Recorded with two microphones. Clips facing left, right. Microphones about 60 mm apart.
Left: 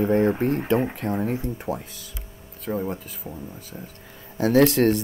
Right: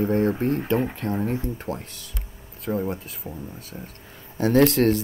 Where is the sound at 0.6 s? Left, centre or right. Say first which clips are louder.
Left 1 dB; centre.